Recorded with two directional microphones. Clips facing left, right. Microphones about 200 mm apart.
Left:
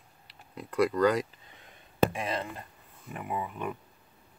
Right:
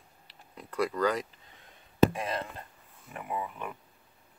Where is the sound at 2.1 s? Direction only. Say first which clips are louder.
Left 1 dB; 20° left (ahead or behind).